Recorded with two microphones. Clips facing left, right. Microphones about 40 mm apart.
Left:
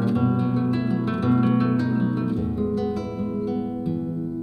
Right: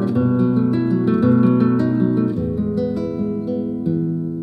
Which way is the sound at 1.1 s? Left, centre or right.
Centre.